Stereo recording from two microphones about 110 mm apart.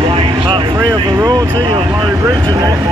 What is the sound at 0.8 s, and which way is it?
Speech, 35° right (ahead or behind).